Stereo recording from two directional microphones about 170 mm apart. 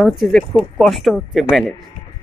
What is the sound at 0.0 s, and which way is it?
Speech, centre (ahead or behind).